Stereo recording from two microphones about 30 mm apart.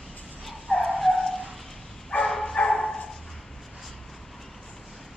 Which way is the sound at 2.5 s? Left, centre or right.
Left.